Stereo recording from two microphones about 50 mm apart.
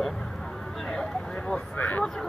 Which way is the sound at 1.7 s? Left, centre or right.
Left.